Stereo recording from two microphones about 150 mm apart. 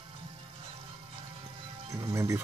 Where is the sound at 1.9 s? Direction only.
20° right (ahead or behind).